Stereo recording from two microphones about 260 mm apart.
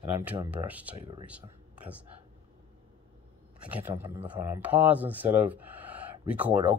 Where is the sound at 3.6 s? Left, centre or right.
Centre.